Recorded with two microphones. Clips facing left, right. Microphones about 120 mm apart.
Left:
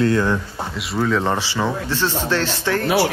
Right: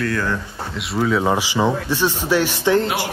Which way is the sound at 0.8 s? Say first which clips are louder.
Right 1 dB; centre (ahead or behind).